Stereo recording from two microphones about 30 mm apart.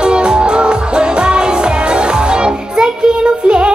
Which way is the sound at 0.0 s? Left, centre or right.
Right.